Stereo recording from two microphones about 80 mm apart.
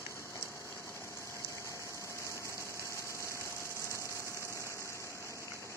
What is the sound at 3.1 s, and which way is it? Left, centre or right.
Engine, left.